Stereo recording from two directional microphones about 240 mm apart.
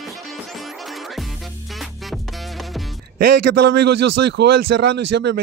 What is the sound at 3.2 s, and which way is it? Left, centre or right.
Speech, right.